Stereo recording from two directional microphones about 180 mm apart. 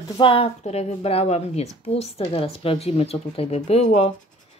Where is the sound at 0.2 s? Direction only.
30° left (ahead or behind).